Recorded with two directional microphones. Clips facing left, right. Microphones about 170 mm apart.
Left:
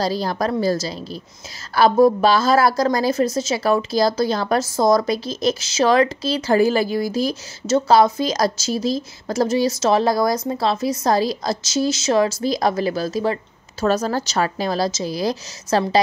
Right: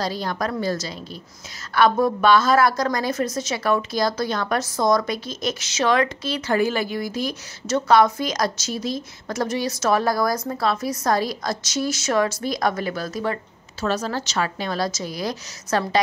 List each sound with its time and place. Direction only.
0.0 s a woman's voice: 35° left (ahead or behind)
13.7 s speech: 40° left (ahead or behind)